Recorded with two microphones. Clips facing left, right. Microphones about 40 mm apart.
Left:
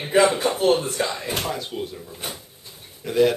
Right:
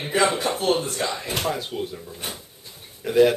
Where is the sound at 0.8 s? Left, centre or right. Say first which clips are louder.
Left 2 dB; centre.